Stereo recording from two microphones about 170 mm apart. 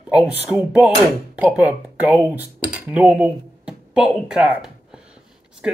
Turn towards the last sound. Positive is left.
turn(degrees=-5)  # may be behind; listen again after turning